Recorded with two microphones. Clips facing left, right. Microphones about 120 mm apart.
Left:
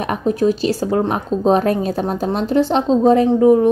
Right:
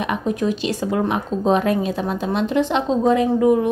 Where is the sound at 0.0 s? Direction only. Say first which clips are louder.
Left 4 dB; 40° left (ahead or behind).